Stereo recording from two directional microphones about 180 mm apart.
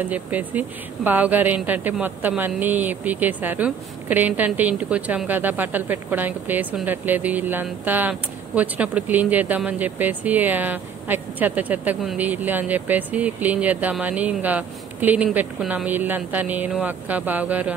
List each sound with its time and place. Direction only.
0.0 s speech: 10° right (ahead or behind)